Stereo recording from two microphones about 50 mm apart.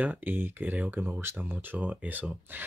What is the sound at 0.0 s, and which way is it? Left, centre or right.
Speech, right.